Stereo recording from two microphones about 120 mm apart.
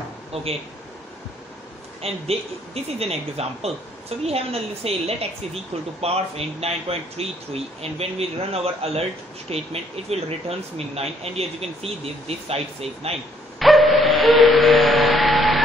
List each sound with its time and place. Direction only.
0.3 s speech: 55° right (ahead or behind)
2.0 s a woman's voice: 60° right (ahead or behind)
13.6 s music: centre (ahead or behind)